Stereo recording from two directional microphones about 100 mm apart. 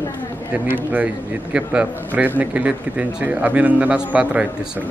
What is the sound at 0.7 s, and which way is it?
A man's voice, 15° right (ahead or behind).